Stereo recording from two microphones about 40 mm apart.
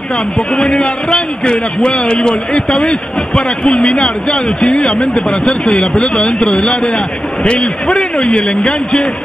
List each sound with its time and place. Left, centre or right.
0.7 s a man's voice: left